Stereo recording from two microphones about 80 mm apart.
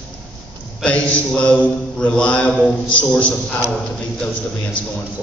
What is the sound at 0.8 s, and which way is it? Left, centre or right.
A man's voice, centre.